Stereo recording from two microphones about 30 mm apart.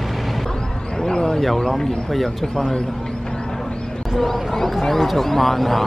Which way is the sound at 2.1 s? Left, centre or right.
Centre.